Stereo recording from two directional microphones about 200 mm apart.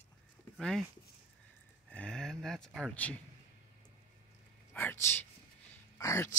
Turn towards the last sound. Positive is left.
turn(degrees=15)  # may be behind; listen again after turning